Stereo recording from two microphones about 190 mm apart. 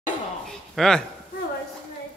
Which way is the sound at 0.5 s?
5° left (ahead or behind).